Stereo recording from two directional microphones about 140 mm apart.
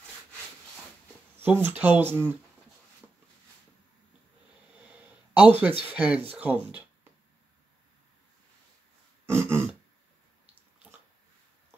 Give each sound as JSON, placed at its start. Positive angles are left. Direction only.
{"t": 1.4, "sound": "speech", "side_deg": -10}
{"t": 5.3, "sound": "speech", "side_deg": -15}
{"t": 9.2, "sound": "throat clearing", "side_deg": -20}